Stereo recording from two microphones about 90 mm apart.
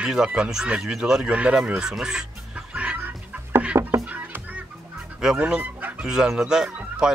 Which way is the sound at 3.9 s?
30° right (ahead or behind).